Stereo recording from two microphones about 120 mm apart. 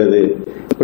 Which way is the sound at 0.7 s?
Centre (ahead or behind).